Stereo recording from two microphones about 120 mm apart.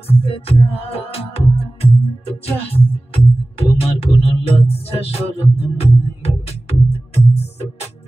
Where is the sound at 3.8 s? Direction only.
55° left (ahead or behind).